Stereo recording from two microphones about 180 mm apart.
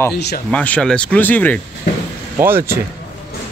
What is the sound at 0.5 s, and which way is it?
Speech, 5° left (ahead or behind).